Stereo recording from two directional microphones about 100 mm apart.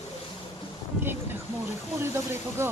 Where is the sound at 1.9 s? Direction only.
25° right (ahead or behind).